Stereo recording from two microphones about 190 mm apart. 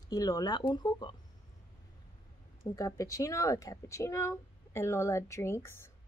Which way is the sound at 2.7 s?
15° left (ahead or behind).